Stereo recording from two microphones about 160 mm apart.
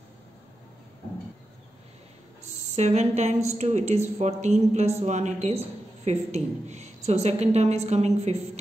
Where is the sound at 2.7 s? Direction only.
45° right (ahead or behind).